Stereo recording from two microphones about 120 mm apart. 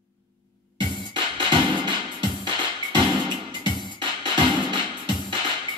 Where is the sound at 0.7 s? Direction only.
40° right (ahead or behind).